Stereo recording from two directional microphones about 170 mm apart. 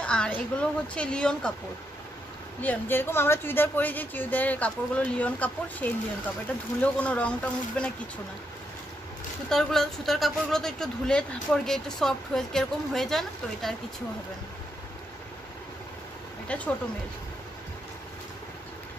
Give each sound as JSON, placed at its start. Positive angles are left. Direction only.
{"t": 0.0, "sound": "a woman's voice", "side_deg": 5}
{"t": 2.6, "sound": "speech", "side_deg": 10}
{"t": 9.5, "sound": "speech", "side_deg": 0}
{"t": 16.4, "sound": "speech", "side_deg": 10}